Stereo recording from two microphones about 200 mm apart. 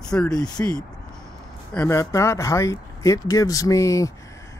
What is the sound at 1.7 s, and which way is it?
Speech, 10° left (ahead or behind).